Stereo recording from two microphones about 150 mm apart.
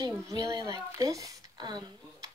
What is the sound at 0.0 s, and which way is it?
Speech, 20° right (ahead or behind).